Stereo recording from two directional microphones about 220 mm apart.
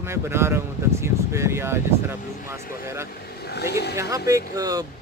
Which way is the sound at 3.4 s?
50° left (ahead or behind).